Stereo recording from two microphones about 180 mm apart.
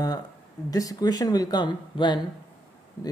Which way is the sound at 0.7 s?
20° left (ahead or behind).